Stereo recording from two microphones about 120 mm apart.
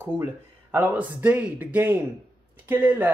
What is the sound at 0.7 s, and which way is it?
Speech, 15° right (ahead or behind).